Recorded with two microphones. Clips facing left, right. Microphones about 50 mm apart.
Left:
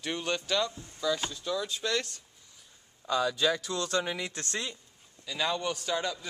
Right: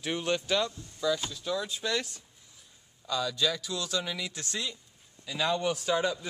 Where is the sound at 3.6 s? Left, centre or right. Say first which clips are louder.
Left 3 dB; left.